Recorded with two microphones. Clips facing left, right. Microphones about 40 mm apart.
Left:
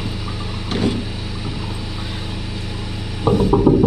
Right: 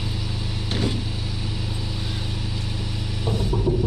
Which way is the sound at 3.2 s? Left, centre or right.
Left.